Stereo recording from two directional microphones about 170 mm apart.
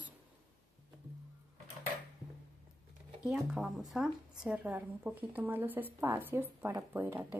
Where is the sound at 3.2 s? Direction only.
5° right (ahead or behind).